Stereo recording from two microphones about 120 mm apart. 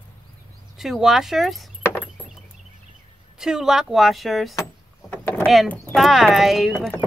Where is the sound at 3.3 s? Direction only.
5° right (ahead or behind).